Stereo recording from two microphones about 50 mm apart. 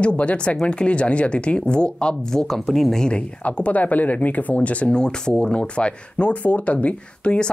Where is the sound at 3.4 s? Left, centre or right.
Left.